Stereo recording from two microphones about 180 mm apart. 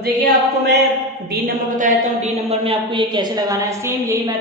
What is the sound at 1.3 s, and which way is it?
A woman's voice, 45° right (ahead or behind).